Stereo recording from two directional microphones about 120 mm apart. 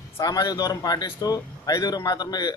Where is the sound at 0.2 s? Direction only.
30° left (ahead or behind).